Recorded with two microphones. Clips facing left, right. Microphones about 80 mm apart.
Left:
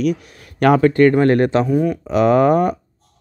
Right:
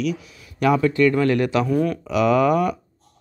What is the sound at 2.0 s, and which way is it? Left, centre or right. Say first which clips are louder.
Speech: left 5 dB; left.